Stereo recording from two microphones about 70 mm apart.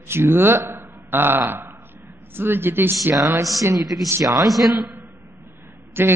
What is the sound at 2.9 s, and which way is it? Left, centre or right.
Speech, right.